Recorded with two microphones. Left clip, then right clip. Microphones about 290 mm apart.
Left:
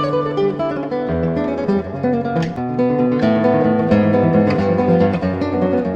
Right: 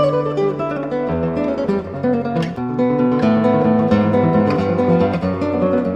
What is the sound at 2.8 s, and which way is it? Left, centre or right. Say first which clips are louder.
Music: even; left.